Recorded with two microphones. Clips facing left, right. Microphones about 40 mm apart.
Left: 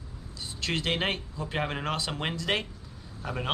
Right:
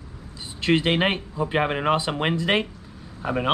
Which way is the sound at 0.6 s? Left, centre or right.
Right.